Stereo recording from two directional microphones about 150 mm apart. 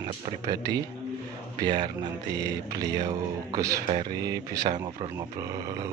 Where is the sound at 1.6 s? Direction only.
30° right (ahead or behind).